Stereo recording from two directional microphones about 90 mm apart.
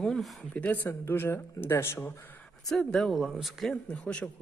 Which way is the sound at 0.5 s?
15° left (ahead or behind).